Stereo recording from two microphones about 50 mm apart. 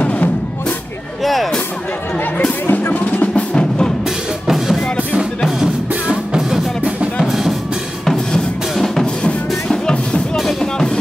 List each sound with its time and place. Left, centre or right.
0.0 s drum: left
1.2 s music: centre
2.7 s music: left
3.5 s music: centre
4.5 s music: centre
8.0 s drum: centre
9.7 s music: centre